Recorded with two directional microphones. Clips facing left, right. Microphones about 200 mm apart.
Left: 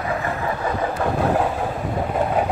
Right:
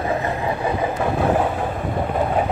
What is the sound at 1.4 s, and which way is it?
Vehicle, centre (ahead or behind).